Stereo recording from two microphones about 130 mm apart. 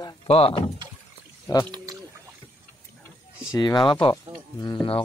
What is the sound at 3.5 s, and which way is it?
Speech, 35° left (ahead or behind).